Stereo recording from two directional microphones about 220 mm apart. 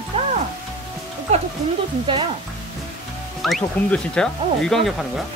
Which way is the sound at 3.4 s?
Centre (ahead or behind).